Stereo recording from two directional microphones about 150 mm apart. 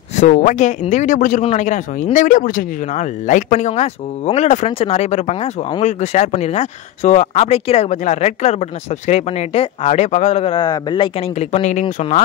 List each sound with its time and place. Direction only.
0.3 s speech: 55° left (ahead or behind)